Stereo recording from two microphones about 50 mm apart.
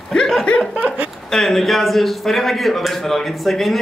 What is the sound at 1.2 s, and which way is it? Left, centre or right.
A man's voice, centre.